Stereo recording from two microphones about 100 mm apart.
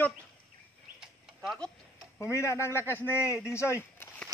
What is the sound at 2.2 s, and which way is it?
Speech, 30° left (ahead or behind).